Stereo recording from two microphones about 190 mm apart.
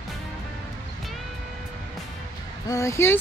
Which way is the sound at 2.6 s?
15° left (ahead or behind).